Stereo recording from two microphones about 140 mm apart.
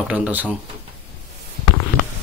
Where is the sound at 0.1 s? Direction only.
10° right (ahead or behind).